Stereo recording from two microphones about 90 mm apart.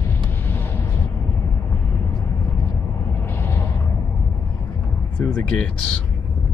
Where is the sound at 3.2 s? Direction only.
25° left (ahead or behind).